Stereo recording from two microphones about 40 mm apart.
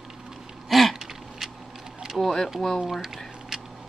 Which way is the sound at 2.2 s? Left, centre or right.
Centre.